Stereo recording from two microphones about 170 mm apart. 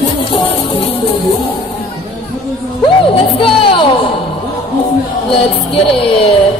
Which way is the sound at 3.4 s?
30° left (ahead or behind).